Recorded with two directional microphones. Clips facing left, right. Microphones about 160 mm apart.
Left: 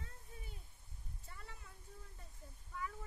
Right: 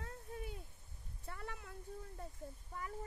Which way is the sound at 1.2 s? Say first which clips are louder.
Right 10 dB; 65° right (ahead or behind).